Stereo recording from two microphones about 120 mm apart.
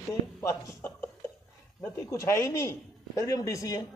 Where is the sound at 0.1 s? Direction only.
25° left (ahead or behind).